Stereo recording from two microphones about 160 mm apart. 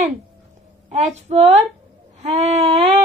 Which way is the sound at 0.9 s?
45° right (ahead or behind).